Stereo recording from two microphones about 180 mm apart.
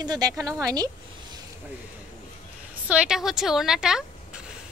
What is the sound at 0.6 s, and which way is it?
Speech, 20° right (ahead or behind).